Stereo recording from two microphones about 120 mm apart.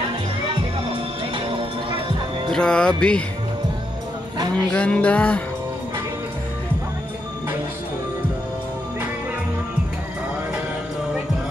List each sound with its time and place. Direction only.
0.8 s music: 50° right (ahead or behind)
2.5 s music: 5° left (ahead or behind)
4.7 s music: 10° left (ahead or behind)